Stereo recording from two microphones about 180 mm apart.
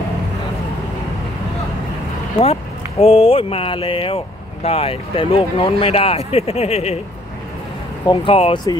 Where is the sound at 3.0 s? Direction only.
35° left (ahead or behind).